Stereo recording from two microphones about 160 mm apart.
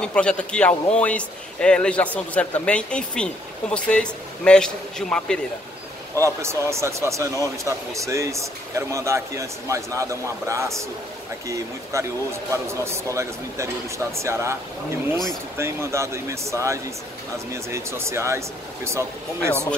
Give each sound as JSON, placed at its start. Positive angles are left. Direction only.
{"t": 0.0, "sound": "a man's voice", "side_deg": 5}
{"t": 6.1, "sound": "speech", "side_deg": -20}